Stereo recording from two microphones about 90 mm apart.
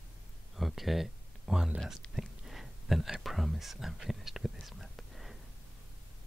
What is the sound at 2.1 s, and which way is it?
Speech, 5° right (ahead or behind).